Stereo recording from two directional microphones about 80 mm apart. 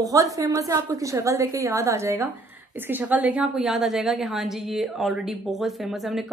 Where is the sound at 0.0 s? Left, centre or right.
Right.